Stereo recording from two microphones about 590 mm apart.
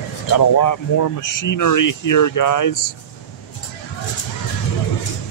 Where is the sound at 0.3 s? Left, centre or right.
Left.